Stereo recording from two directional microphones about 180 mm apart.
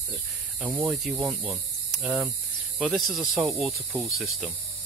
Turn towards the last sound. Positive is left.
turn(degrees=0)  # may be behind; listen again after turning